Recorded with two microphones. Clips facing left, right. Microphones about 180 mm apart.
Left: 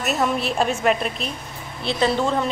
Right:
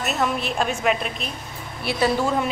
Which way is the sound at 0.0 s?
Centre (ahead or behind).